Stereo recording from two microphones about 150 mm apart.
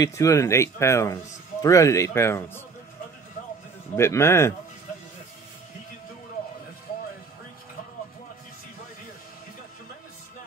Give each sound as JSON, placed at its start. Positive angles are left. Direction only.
{"t": 0.0, "sound": "a man's voice", "side_deg": 20}
{"t": 3.9, "sound": "a man's voice", "side_deg": 15}